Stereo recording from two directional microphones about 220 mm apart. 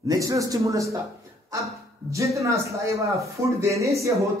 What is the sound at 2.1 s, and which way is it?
A man's voice, 15° right (ahead or behind).